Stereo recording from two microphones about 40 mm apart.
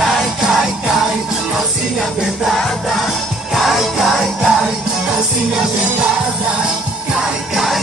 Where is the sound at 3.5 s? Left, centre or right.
Centre.